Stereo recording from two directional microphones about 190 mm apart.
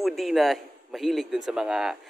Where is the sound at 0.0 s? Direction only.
Centre (ahead or behind).